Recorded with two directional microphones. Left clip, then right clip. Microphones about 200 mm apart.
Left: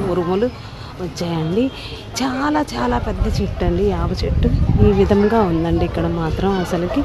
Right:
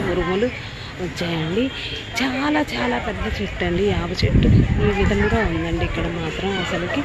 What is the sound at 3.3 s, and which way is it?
Speech, 25° left (ahead or behind).